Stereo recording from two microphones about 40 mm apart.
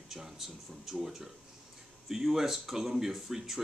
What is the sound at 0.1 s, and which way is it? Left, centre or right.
Speech, centre.